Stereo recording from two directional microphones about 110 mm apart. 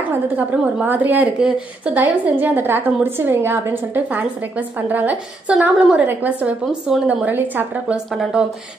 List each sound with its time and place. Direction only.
0.5 s a woman's voice: 15° right (ahead or behind)
8.1 s speech: 5° right (ahead or behind)